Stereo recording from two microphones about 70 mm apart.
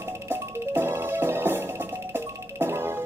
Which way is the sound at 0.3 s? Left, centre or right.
Right.